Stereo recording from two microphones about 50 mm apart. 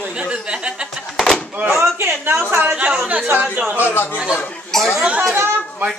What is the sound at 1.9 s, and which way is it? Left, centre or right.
Speech, right.